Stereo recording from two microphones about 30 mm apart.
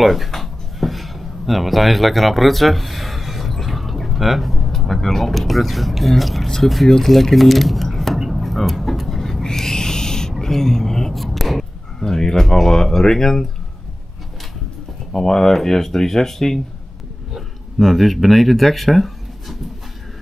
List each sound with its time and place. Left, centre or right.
0.0 s speech: centre
0.3 s a sound: centre
4.7 s speech: centre
7.3 s a sound: centre
12.5 s speech: centre
15.2 s speech: centre
17.7 s speech: centre